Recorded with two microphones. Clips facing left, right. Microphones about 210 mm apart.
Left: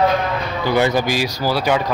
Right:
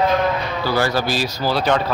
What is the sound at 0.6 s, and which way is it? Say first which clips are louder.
Speech: left 3 dB; 20° left (ahead or behind).